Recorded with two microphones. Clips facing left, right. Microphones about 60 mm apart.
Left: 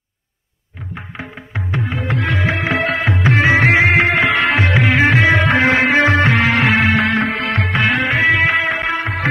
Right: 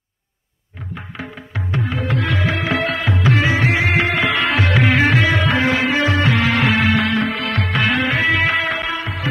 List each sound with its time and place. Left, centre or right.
1.1 s music: left
4.7 s music: centre
5.1 s music: left
8.7 s music: left